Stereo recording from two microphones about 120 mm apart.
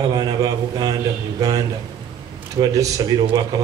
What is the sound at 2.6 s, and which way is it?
Speech, 35° right (ahead or behind).